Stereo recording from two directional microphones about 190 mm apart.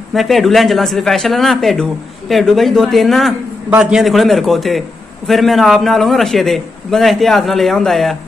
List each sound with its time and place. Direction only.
0.1 s speech: centre (ahead or behind)